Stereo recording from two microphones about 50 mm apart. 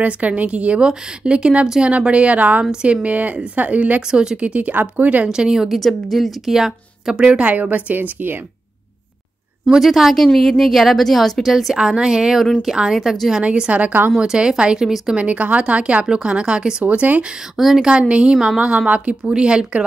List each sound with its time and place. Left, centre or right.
0.0 s a woman's voice: right
2.6 s a woman's voice: centre
4.1 s a woman's voice: centre; by 5.3 s right
5.3 s a woman's voice: centre
5.8 s a woman's voice: centre; by 8.4 s right
9.8 s a woman's voice: centre
13.4 s a woman's voice: right
14.1 s a woman's voice: centre
15.1 s a woman's voice: right
17.6 s a woman's voice: centre
17.8 s a woman's voice: right
18.3 s a woman's voice: centre
18.6 s a woman's voice: right
19.3 s a woman's voice: centre